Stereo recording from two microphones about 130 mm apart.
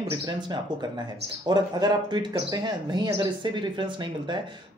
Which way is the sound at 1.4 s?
35° right (ahead or behind).